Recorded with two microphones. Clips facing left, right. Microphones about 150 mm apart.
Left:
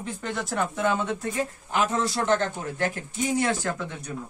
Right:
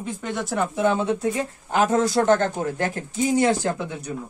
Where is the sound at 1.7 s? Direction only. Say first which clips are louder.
Right 7 dB; 45° right (ahead or behind).